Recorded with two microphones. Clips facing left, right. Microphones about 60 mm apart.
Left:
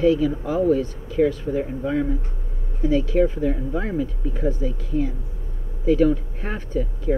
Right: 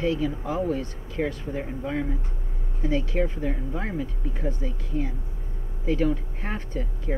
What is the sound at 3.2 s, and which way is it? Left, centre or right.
Speech, centre.